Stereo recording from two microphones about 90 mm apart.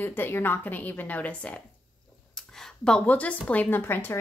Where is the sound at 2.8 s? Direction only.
15° left (ahead or behind).